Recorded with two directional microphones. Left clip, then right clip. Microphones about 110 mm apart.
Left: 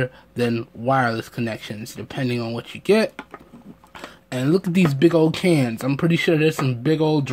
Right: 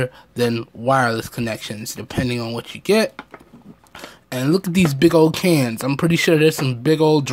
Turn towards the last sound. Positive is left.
turn(degrees=-25)  # may be behind; listen again after turning